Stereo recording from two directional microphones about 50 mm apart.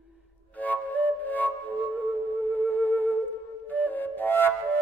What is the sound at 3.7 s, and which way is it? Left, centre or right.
Flute, left.